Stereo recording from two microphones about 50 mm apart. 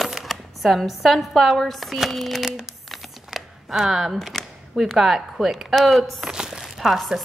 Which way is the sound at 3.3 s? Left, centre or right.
Centre.